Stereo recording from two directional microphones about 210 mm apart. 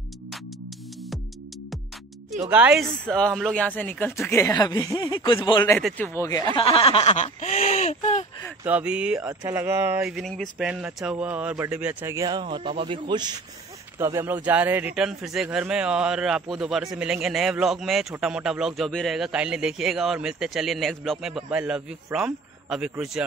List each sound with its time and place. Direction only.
2.5 s a man's voice: 5° right (ahead or behind); by 5.8 s 20° left (ahead or behind)
5.8 s speech: 5° left (ahead or behind); by 8.3 s 30° left (ahead or behind)
8.6 s a man's voice: 5° right (ahead or behind)
10.1 s a man's voice: centre (ahead or behind)